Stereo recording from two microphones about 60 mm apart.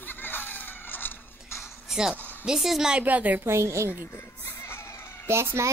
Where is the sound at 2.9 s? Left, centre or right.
Right.